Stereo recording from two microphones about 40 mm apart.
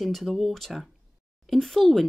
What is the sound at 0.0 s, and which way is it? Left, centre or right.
Speech, centre.